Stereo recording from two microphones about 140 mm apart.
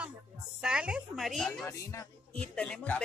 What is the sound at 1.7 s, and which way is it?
Speech, 20° left (ahead or behind).